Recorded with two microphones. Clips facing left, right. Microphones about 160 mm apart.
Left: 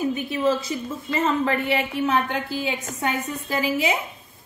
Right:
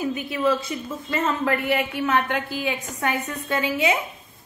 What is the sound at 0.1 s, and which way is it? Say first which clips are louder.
Speech: even; 25° left (ahead or behind).